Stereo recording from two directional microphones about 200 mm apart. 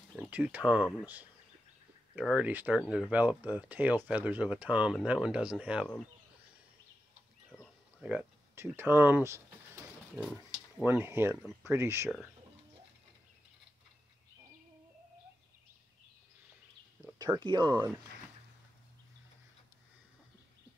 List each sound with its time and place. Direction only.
0.3 s speech: 5° right (ahead or behind)
7.6 s speech: 5° right (ahead or behind)
17.4 s speech: 20° right (ahead or behind)
17.7 s speech: 10° right (ahead or behind)